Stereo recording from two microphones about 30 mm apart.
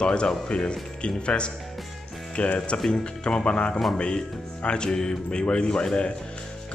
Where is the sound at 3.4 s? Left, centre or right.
Left.